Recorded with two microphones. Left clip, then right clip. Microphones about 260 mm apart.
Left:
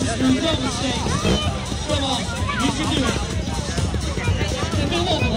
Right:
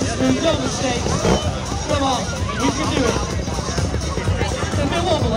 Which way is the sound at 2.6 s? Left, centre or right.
Right.